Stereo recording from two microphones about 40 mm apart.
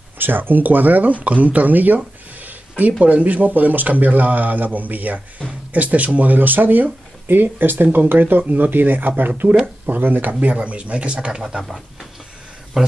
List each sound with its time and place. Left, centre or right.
0.2 s speech: right
2.0 s a sound: right
3.0 s speech: right
10.4 s speech: right
11.4 s speech: centre
12.7 s speech: centre